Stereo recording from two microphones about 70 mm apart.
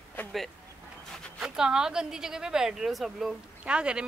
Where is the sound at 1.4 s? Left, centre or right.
Centre.